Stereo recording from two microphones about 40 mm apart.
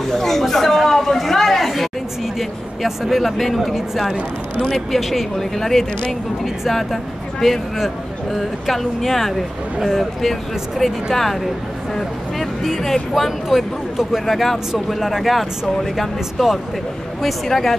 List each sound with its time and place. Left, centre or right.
0.0 s a sound: centre
2.3 s speech: centre
4.6 s speech: left
4.9 s speech: centre